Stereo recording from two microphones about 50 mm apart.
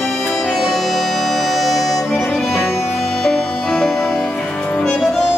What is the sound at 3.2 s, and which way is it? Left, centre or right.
Music, centre.